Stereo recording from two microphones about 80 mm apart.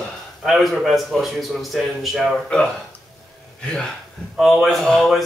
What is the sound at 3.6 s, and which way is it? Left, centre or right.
A man's voice, centre.